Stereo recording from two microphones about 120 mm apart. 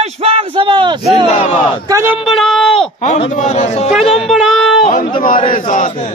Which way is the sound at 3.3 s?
85° left.